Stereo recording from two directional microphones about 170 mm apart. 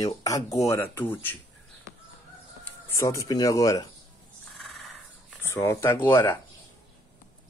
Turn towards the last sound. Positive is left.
turn(degrees=15)  # may be behind; listen again after turning